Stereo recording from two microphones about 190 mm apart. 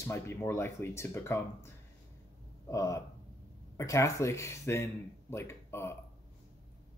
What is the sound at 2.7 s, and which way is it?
Speech, 15° left (ahead or behind).